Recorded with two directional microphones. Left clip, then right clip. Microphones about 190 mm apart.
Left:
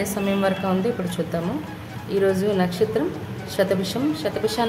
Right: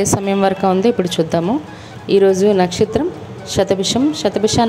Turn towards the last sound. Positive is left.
turn(degrees=-30)  # may be behind; listen again after turning